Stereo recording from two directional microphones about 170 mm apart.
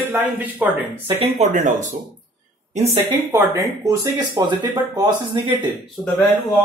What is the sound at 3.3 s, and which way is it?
Speech, 15° right (ahead or behind).